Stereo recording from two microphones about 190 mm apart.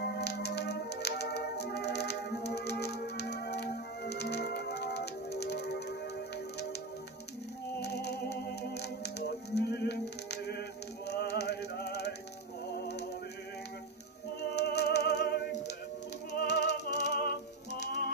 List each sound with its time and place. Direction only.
0.2 s music: 60° left (ahead or behind)
7.8 s music: 60° left (ahead or behind)
14.5 s music: 60° left (ahead or behind)